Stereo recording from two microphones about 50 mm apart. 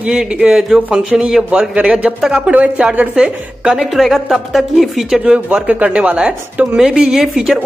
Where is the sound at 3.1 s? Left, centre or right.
Centre.